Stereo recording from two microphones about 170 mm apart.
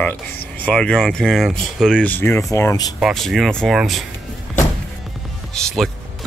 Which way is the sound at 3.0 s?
Centre (ahead or behind).